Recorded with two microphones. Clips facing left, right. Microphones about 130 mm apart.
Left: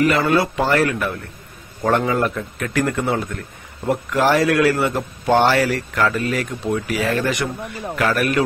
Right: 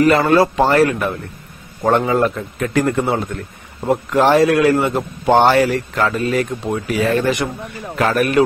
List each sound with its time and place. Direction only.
0.0 s a man's voice: 40° right (ahead or behind); by 2.0 s 20° right (ahead or behind)
2.0 s a man's voice: 30° right (ahead or behind)